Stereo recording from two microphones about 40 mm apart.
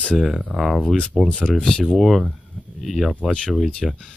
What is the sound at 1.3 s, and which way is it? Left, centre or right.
Speech, left.